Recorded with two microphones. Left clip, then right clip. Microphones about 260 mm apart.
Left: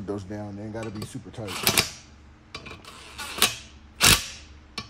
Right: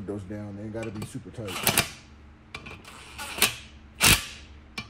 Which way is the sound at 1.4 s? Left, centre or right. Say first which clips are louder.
Left 2 dB; centre.